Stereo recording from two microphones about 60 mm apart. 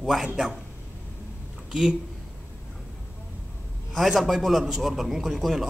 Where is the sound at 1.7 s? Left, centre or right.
Centre.